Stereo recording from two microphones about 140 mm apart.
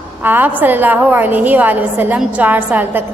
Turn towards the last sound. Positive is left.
turn(degrees=-15)  # may be behind; listen again after turning